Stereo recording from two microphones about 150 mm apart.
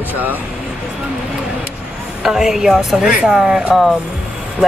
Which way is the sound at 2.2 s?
Centre (ahead or behind).